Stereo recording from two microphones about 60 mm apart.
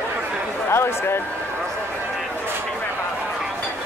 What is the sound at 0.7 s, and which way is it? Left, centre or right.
Speech, left.